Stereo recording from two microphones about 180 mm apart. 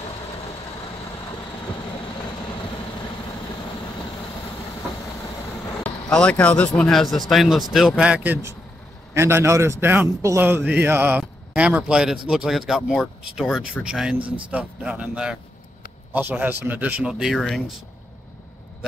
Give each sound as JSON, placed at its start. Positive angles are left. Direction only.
{"t": 5.9, "sound": "a man's voice", "side_deg": 5}
{"t": 14.2, "sound": "a man's voice", "side_deg": -30}
{"t": 14.5, "sound": "a man's voice", "side_deg": -5}